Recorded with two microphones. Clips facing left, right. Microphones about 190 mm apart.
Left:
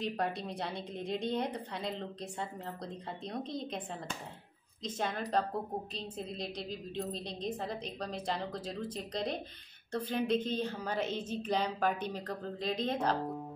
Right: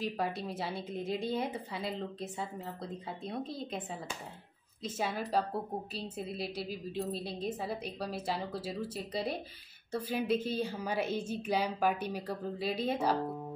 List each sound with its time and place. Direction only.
0.0 s a woman's voice: centre (ahead or behind)
4.8 s a woman's voice: 5° right (ahead or behind)